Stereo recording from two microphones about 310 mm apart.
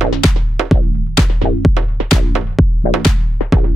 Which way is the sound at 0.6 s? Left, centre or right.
Centre.